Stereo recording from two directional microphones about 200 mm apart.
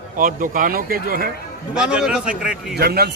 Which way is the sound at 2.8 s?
50° right (ahead or behind).